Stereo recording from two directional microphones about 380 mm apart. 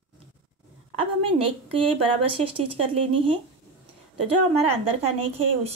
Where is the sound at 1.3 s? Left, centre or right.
Centre.